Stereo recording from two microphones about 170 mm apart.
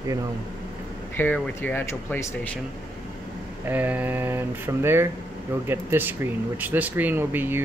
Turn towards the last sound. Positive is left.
turn(degrees=-10)  # may be behind; listen again after turning